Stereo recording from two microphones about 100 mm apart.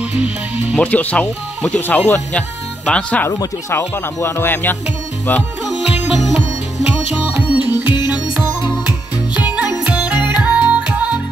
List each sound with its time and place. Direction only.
0.1 s speech: 15° right (ahead or behind)
0.7 s speech: 15° left (ahead or behind)
3.3 s speech: 25° left (ahead or behind)
6.1 s music: 5° right (ahead or behind)